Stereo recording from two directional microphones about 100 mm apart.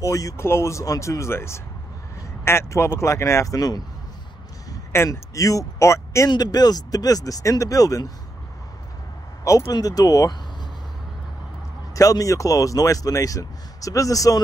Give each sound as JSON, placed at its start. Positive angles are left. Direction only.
{"t": 0.0, "sound": "speech", "side_deg": 35}
{"t": 4.9, "sound": "speech", "side_deg": 30}
{"t": 6.3, "sound": "speech", "side_deg": 45}
{"t": 9.4, "sound": "speech", "side_deg": 30}
{"t": 11.9, "sound": "speech", "side_deg": 35}